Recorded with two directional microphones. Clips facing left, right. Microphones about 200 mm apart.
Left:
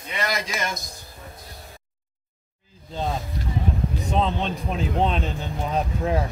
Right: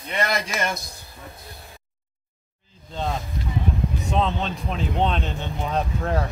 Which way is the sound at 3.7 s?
35° left (ahead or behind).